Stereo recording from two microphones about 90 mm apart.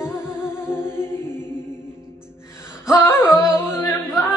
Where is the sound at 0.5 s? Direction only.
25° left (ahead or behind).